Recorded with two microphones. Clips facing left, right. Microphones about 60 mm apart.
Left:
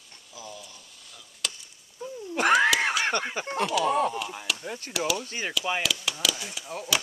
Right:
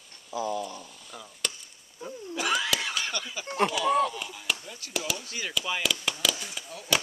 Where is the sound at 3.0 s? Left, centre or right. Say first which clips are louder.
Left 7 dB; left.